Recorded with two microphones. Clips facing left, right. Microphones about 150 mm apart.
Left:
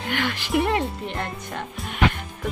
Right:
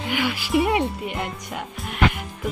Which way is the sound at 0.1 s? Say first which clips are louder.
Right 2 dB; 10° right (ahead or behind).